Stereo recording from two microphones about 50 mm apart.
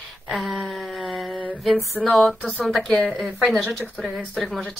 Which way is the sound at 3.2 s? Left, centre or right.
Right.